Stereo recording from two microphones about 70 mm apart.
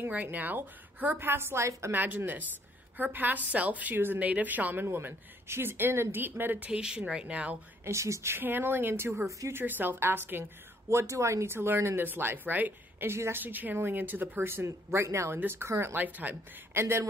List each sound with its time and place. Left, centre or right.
0.1 s a woman's voice: right
4.8 s speech: right
6.7 s speech: centre
7.8 s a woman's voice: right
8.4 s speech: right
9.5 s speech: right
10.9 s a woman's voice: right
16.0 s a woman's voice: right
16.7 s speech: right